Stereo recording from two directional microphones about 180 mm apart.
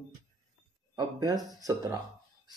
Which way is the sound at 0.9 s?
20° right (ahead or behind).